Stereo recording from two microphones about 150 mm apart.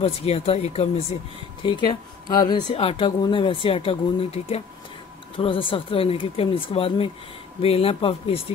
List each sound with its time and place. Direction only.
0.0 s speech: 40° left (ahead or behind)
1.6 s speech: 30° left (ahead or behind)